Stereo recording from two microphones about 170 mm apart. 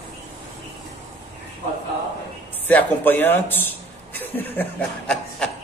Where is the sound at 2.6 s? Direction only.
10° left (ahead or behind).